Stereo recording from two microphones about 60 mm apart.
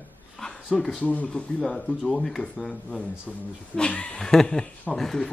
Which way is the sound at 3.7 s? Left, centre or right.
Centre.